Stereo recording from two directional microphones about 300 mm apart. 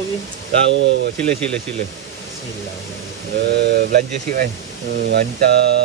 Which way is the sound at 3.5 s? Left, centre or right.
Right.